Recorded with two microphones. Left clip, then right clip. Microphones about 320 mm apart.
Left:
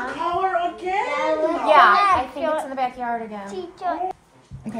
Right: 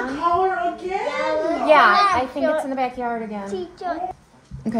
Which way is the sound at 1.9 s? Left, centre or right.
Centre.